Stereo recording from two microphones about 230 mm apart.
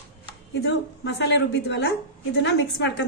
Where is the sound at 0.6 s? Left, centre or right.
Left.